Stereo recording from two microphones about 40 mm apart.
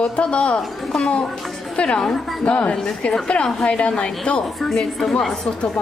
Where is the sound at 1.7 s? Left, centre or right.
Left.